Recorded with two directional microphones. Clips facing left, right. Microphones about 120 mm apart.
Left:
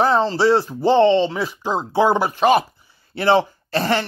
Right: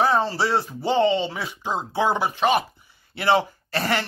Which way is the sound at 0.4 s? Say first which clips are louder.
Left 7 dB; centre (ahead or behind).